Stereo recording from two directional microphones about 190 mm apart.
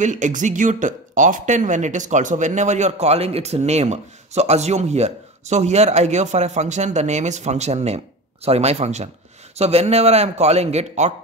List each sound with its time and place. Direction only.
0.0 s speech: 40° right (ahead or behind)